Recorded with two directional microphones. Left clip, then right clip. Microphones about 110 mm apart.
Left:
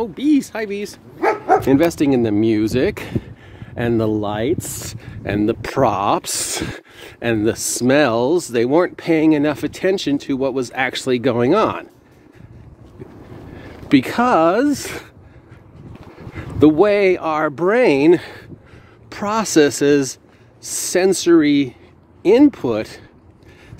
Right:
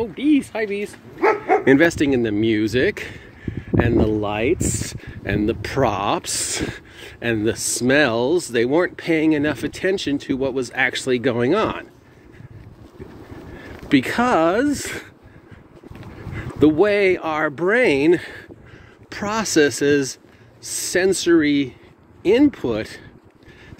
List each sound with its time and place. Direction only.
0.0 s speech: 35° left (ahead or behind)
2.0 s speech: 45° left (ahead or behind)
13.6 s a sound: 55° left (ahead or behind)
14.1 s speech: 40° left (ahead or behind)
16.3 s speech: 60° left (ahead or behind)